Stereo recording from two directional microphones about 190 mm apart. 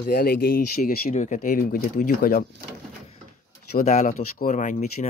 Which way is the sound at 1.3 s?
50° left (ahead or behind).